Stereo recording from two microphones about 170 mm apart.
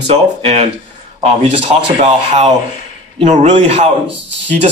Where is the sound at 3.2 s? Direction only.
40° right (ahead or behind).